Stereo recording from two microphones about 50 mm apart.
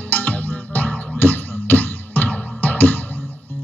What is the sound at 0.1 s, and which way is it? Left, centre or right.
Music, left.